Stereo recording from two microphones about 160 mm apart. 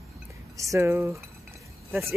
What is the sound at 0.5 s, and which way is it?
Speech, 20° right (ahead or behind).